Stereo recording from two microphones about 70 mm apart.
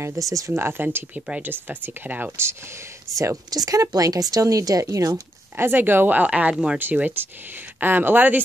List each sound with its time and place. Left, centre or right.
0.2 s speech: right
0.5 s speech: right
0.8 s speech: right
3.1 s speech: centre
3.4 s speech: right
5.6 s speech: right